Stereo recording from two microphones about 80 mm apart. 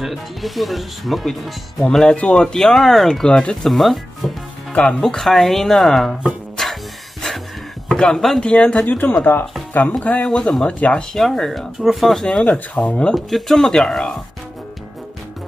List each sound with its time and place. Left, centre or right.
0.0 s speech: centre
6.5 s music: centre
7.9 s speech: centre; by 9.9 s left
10.0 s speech: centre
13.1 s speech: centre